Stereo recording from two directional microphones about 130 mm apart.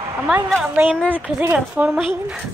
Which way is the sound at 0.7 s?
10° right (ahead or behind).